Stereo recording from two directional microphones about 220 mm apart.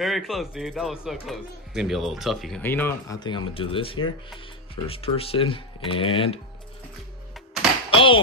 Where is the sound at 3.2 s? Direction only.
25° left (ahead or behind).